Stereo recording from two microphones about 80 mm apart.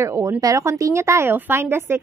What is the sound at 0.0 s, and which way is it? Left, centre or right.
A woman's voice, right.